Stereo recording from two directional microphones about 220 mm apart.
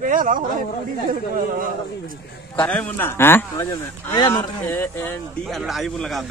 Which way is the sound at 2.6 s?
5° left (ahead or behind).